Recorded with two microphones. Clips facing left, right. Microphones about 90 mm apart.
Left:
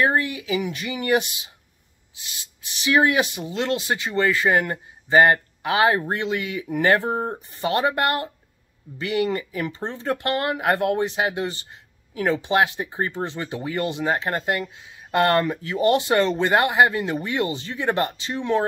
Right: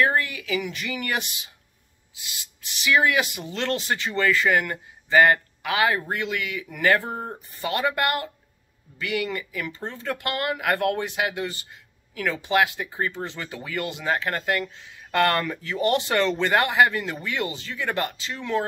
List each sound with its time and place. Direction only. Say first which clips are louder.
0.0 s speech: left 1 dB; 25° left (ahead or behind)
2.8 s speech: left 2 dB; 30° left (ahead or behind)